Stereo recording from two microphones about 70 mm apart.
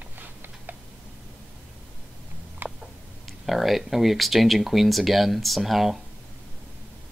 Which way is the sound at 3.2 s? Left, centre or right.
Centre.